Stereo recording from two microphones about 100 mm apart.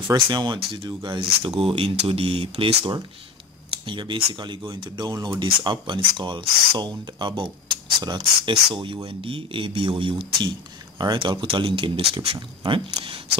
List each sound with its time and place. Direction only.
0.1 s speech: 45° right (ahead or behind); by 3.0 s 65° right (ahead or behind)
3.8 s speech: 55° right (ahead or behind)
5.4 s speech: 55° right (ahead or behind)